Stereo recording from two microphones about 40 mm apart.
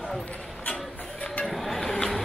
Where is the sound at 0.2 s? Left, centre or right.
Left.